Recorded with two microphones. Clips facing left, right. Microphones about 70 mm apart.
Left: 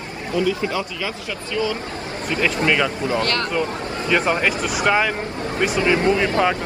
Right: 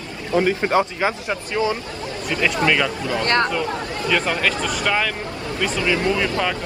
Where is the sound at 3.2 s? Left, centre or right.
Right.